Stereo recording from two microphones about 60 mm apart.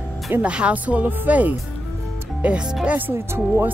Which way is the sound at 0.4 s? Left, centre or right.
Centre.